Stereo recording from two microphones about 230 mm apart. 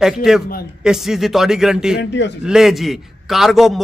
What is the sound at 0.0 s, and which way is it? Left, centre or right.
A man's voice, centre.